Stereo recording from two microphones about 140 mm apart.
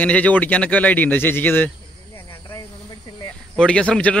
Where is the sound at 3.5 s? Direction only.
5° left (ahead or behind).